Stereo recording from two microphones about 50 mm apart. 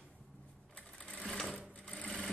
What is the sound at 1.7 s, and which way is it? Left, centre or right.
Sewing machine, left.